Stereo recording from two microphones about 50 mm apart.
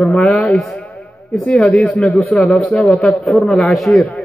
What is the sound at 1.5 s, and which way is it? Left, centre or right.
A man's voice, centre.